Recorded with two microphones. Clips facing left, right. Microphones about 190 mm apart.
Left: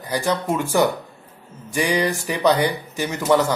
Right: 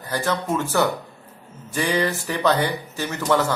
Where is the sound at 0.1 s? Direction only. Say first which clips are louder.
Left 2 dB; 15° left (ahead or behind).